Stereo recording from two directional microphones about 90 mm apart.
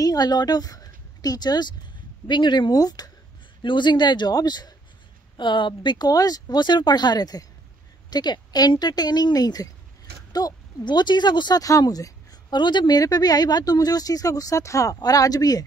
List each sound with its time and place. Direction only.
0.0 s a woman's voice: 45° left (ahead or behind)
3.6 s speech: 60° left (ahead or behind)
5.4 s a woman's voice: 60° left (ahead or behind)
11.6 s a woman's voice: 40° left (ahead or behind)